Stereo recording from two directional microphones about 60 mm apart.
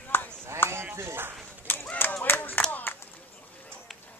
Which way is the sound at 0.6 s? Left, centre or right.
Left.